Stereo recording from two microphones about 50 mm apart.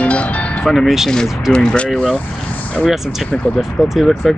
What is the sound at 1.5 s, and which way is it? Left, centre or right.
Speech, centre.